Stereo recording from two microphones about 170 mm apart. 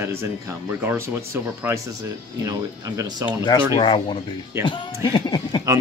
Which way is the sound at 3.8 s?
30° left (ahead or behind).